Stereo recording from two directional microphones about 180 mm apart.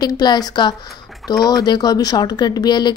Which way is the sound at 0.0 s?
25° left (ahead or behind).